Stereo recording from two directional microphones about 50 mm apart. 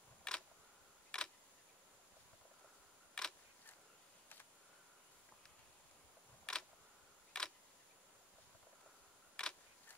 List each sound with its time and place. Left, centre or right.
0.3 s camera: centre
1.1 s tick: centre
3.2 s camera: centre
6.5 s camera: centre
7.3 s a sound: centre
9.4 s camera: centre